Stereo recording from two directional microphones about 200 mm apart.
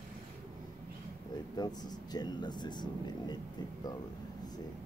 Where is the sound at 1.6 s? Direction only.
20° left (ahead or behind).